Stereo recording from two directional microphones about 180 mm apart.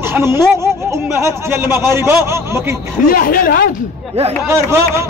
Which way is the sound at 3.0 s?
50° left (ahead or behind).